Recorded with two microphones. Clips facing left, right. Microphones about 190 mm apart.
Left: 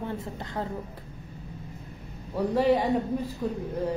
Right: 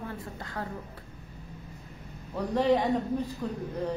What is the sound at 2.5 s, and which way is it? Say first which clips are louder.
A man's voice: left 1 dB; 5° left (ahead or behind).